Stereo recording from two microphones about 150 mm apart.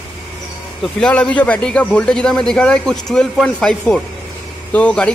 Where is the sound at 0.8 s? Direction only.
5° left (ahead or behind).